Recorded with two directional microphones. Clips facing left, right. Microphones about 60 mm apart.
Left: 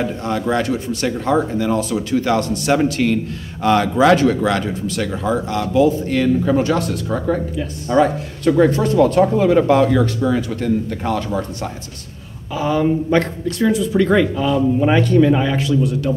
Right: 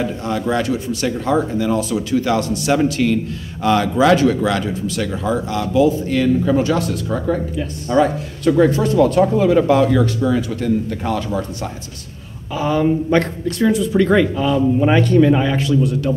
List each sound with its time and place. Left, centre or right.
0.2 s speech: left
8.0 s speech: left
10.2 s speech: left
10.6 s speech: left
12.5 s speech: centre